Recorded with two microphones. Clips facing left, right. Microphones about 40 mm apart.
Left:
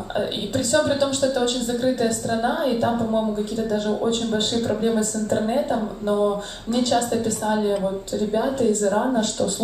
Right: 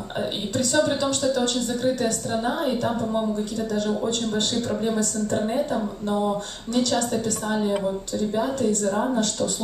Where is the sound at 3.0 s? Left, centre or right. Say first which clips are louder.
Left 2 dB; centre.